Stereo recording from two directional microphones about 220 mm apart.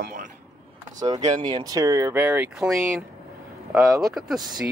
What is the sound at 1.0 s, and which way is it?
A man's voice, 20° right (ahead or behind).